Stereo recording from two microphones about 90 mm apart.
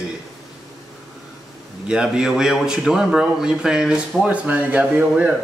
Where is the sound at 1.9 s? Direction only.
10° right (ahead or behind).